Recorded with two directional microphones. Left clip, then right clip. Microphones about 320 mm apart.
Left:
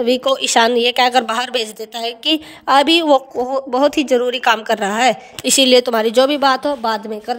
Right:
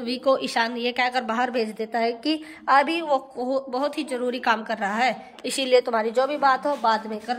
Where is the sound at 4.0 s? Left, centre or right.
Centre.